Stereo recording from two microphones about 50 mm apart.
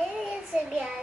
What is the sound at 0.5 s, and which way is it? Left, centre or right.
Child singing, centre.